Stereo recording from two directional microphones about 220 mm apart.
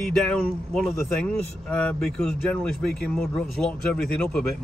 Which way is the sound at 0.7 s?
5° left (ahead or behind).